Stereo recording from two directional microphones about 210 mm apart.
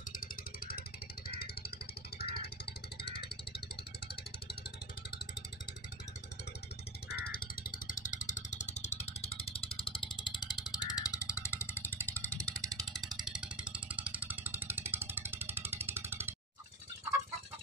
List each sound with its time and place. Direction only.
0.1 s vehicle: 40° left (ahead or behind)
2.1 s music: 50° left (ahead or behind)
7.1 s vehicle: 45° left (ahead or behind); by 12.2 s 10° left (ahead or behind)
12.4 s music: 5° left (ahead or behind)